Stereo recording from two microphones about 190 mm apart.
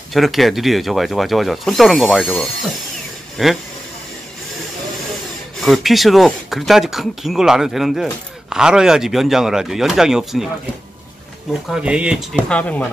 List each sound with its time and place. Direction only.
0.1 s speech: centre (ahead or behind)
5.6 s speech: centre (ahead or behind)
11.6 s speech: 5° right (ahead or behind)